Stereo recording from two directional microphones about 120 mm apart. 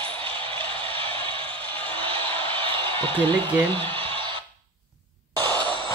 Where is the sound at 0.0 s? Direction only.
50° right (ahead or behind).